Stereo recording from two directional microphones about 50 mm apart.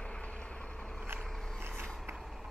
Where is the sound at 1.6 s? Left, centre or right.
Right.